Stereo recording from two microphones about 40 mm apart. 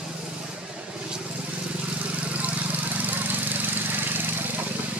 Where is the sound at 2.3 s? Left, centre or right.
Right.